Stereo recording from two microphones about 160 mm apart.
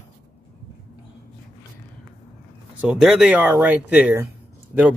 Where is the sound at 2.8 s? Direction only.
5° right (ahead or behind).